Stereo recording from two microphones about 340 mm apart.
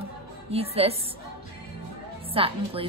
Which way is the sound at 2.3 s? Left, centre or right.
Centre.